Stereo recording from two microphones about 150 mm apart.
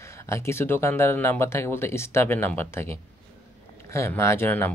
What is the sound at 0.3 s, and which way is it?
Speech, 15° left (ahead or behind).